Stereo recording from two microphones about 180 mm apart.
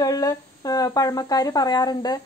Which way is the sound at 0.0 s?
20° left (ahead or behind).